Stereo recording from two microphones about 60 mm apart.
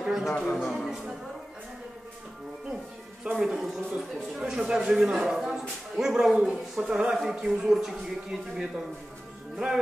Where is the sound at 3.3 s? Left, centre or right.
Centre.